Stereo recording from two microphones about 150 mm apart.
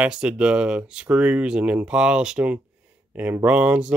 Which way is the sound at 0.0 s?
5° right (ahead or behind).